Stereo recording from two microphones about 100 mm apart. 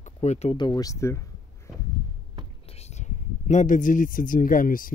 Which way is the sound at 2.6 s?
90° left.